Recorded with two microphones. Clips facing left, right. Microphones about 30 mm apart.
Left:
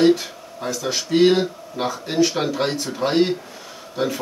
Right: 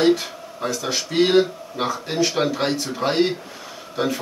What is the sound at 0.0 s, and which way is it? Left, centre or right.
Speech, centre.